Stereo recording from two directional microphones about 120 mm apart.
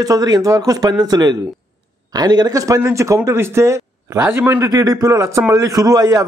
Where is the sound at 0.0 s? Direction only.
30° right (ahead or behind).